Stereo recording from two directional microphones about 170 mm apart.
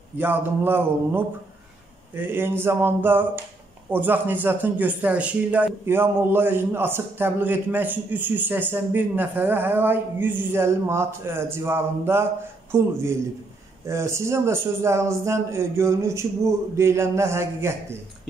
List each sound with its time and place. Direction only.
0.2 s a man's voice: 10° right (ahead or behind)